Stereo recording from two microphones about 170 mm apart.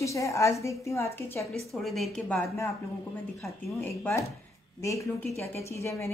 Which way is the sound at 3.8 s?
15° left (ahead or behind).